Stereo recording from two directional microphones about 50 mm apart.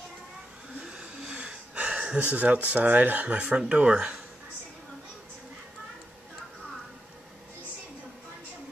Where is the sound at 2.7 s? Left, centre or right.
Right.